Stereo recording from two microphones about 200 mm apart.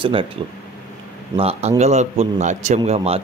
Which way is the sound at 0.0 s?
25° right (ahead or behind).